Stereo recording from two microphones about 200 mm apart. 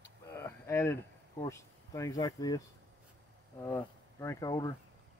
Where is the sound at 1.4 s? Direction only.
15° left (ahead or behind).